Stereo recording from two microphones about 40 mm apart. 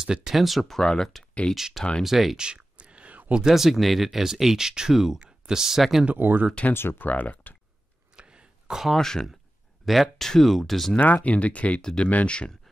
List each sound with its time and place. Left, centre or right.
0.0 s speech: centre
2.3 s a sound: right
3.4 s speech: centre
6.1 s speech: right
6.7 s speech: left
7.1 s speech: left
8.2 s throat clearing: right
8.9 s speech: centre
9.8 s speech: centre
11.0 s speech: left
12.3 s speech: left